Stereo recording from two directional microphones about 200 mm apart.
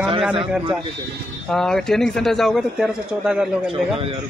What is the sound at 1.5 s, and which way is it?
Speech, centre (ahead or behind).